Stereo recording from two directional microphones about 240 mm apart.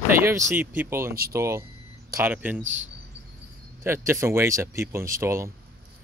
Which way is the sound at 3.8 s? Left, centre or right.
Centre.